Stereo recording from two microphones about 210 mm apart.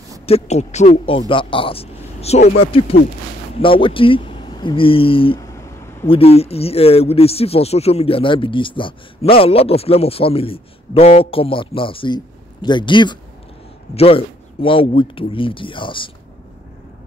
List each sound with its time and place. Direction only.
0.3 s speech: 30° left (ahead or behind)
3.5 s speech: 25° left (ahead or behind)